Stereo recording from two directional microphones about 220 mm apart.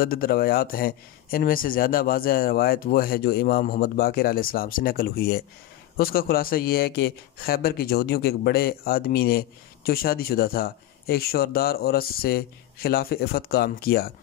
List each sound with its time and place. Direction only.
0.0 s a man's voice: 40° left (ahead or behind)